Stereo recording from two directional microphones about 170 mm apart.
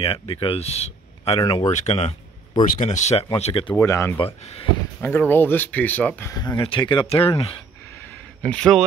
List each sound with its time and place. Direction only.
0.0 s speech: 35° left (ahead or behind)
3.7 s speech: 20° left (ahead or behind)
4.2 s speech: 35° left (ahead or behind)
5.0 s speech: 10° left (ahead or behind); by 7.5 s 35° left (ahead or behind)
8.4 s speech: 5° left (ahead or behind)